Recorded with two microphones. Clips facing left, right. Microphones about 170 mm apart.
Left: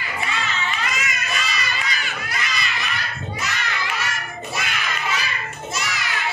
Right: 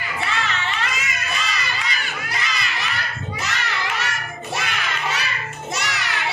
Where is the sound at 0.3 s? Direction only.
70° right (ahead or behind).